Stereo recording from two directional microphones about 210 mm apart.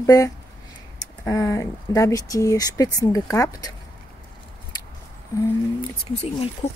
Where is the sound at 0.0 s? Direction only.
15° left (ahead or behind).